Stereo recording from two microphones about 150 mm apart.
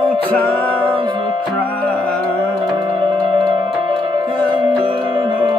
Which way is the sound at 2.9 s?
35° right (ahead or behind).